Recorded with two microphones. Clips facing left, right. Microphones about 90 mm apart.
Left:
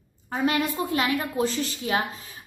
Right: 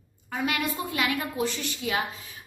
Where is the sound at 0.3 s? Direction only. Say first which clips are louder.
Left 4 dB; 35° left (ahead or behind).